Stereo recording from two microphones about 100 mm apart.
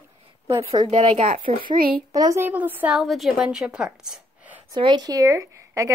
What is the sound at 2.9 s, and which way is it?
A woman's voice, centre (ahead or behind).